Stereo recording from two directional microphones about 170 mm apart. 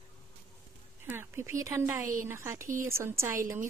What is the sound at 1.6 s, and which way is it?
A woman's voice, 15° right (ahead or behind).